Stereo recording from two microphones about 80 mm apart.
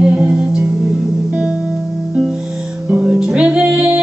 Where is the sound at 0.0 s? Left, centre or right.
Centre.